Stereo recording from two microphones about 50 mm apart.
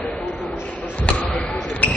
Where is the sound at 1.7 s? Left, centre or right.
Left.